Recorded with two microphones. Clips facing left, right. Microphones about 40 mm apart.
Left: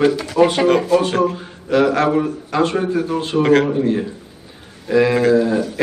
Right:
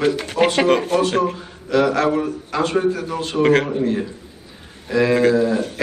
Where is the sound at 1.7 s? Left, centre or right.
Left.